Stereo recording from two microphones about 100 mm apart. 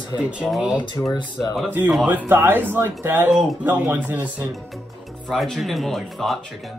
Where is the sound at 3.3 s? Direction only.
5° right (ahead or behind).